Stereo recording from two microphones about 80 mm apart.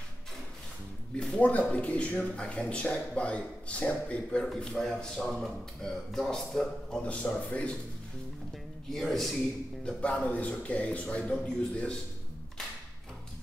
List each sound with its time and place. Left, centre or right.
1.3 s speech: centre
8.9 s a man's voice: centre
9.8 s speech: centre